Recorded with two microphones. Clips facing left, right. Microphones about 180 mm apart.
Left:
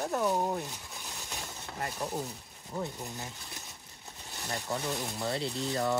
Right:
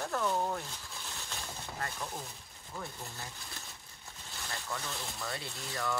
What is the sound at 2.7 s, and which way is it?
Speech, 20° left (ahead or behind).